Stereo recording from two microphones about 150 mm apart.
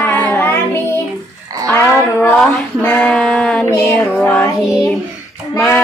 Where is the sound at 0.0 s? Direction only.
10° left (ahead or behind).